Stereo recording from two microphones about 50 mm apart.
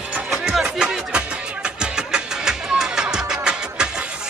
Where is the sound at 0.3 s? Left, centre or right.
Centre.